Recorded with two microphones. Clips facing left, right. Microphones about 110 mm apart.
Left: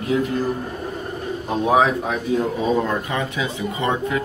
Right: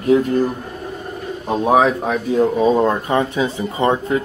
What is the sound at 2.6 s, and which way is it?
Speech, 35° right (ahead or behind).